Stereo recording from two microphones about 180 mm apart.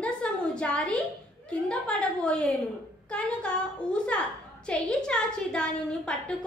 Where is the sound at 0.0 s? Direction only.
5° left (ahead or behind).